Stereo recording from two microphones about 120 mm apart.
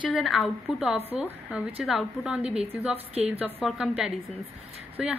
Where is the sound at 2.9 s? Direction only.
60° right (ahead or behind).